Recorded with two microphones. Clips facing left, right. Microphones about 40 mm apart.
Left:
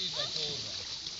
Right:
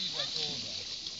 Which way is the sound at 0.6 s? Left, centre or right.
Left.